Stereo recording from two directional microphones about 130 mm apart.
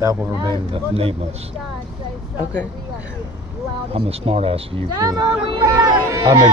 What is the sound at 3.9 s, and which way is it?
Speech, 50° right (ahead or behind).